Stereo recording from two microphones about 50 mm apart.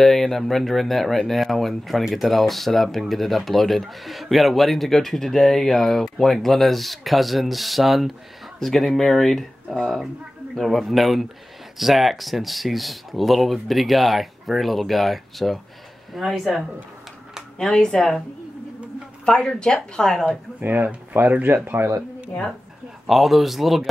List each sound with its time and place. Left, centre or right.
0.0 s speech: centre
17.6 s speech: centre
19.2 s speech: centre
20.6 s speech: right
21.7 s speech: right
23.0 s speech: centre